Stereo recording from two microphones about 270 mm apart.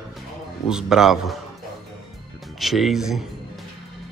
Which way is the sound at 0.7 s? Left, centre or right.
Centre.